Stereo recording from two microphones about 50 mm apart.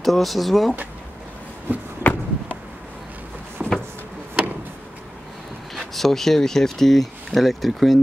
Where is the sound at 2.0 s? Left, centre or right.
Left.